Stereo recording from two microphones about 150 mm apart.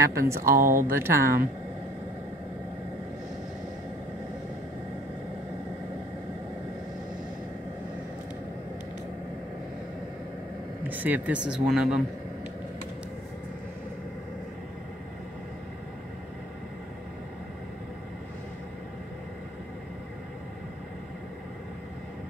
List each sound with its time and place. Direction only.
0.2 s speech: 20° right (ahead or behind)
0.6 s speech: 70° right (ahead or behind)
0.9 s speech: 15° right (ahead or behind)
10.9 s speech: 10° right (ahead or behind)